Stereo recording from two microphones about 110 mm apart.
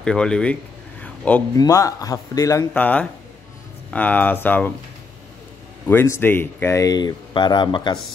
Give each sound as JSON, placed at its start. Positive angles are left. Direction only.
{"t": 0.0, "sound": "speech", "side_deg": 5}
{"t": 1.0, "sound": "a sound", "side_deg": 15}
{"t": 1.6, "sound": "speech", "side_deg": 30}
{"t": 2.7, "sound": "speech", "side_deg": 15}
{"t": 5.9, "sound": "speech", "side_deg": 20}